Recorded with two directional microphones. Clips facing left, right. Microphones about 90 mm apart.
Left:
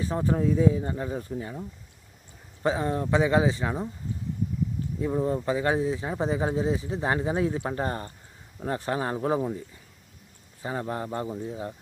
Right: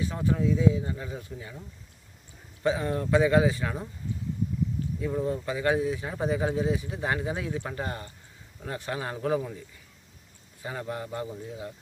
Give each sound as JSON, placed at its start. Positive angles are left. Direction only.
{"t": 0.0, "sound": "speech", "side_deg": 35}
{"t": 5.0, "sound": "speech", "side_deg": 30}
{"t": 10.6, "sound": "speech", "side_deg": 30}